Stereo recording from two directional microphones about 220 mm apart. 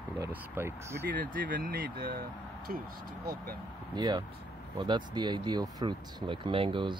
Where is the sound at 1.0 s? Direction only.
40° right (ahead or behind).